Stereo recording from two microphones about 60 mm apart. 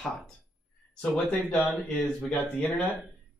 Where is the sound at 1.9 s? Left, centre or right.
Left.